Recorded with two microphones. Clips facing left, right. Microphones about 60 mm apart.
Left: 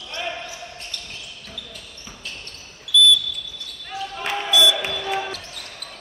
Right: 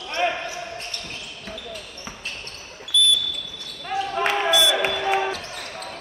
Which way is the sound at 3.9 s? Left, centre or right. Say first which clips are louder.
Right 5 dB; right.